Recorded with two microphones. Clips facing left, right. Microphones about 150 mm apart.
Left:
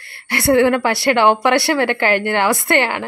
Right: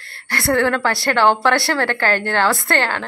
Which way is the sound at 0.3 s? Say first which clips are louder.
Left 4 dB; 20° left (ahead or behind).